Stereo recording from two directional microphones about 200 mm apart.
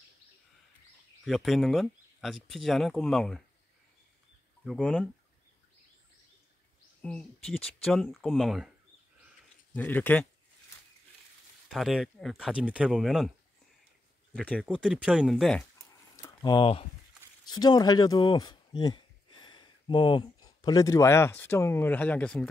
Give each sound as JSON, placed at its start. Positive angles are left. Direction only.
{"t": 1.2, "sound": "speech", "side_deg": 0}
{"t": 4.6, "sound": "speech", "side_deg": 0}
{"t": 7.0, "sound": "speech", "side_deg": 5}
{"t": 9.8, "sound": "speech", "side_deg": 10}
{"t": 11.7, "sound": "speech", "side_deg": 0}
{"t": 14.3, "sound": "speech", "side_deg": 5}
{"t": 16.2, "sound": "speech", "side_deg": 20}